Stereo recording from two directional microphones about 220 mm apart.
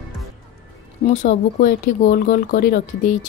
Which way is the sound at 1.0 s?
35° left (ahead or behind).